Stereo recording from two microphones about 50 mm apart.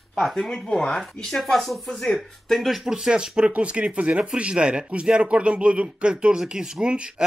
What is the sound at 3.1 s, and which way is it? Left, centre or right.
Speech, centre.